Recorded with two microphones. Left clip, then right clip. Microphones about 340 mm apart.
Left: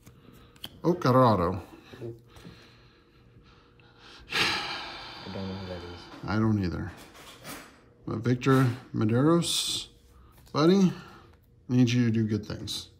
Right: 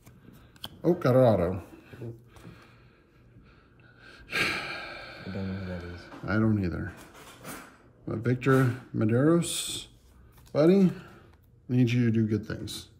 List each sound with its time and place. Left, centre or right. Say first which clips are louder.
0.8 s a sound: even; centre
4.0 s gasp: left 1 dB; centre
8.1 s speech: even; centre